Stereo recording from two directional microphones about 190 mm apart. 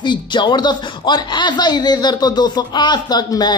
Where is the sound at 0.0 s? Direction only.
25° left (ahead or behind).